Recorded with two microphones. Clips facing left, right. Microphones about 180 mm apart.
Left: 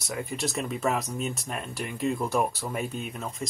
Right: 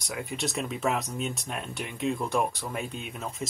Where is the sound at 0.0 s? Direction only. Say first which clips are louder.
Left 1 dB; centre (ahead or behind).